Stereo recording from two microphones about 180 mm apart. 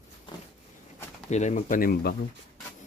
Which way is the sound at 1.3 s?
40° left (ahead or behind).